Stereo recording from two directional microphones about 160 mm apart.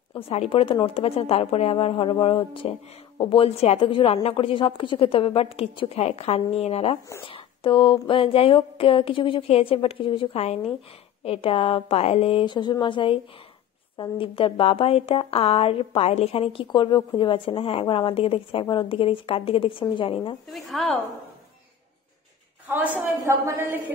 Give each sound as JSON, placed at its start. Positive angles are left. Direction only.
{"t": 0.3, "sound": "speech", "side_deg": 40}
{"t": 20.8, "sound": "a woman's voice", "side_deg": 0}
{"t": 22.7, "sound": "a woman's voice", "side_deg": -10}